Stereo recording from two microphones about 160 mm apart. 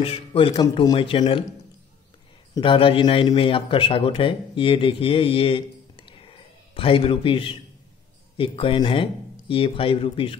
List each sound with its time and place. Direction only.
0.0 s speech: 35° left (ahead or behind)
2.5 s a man's voice: 30° left (ahead or behind)